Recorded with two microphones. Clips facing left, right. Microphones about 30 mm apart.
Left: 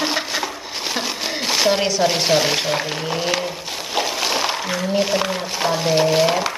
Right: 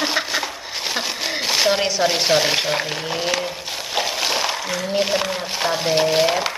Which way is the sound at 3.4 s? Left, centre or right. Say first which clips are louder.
Left 1 dB; centre.